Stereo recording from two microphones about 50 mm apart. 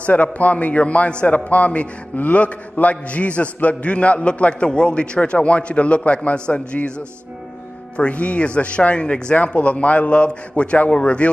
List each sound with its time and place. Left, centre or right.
0.0 s a man's voice: left
8.0 s a man's voice: left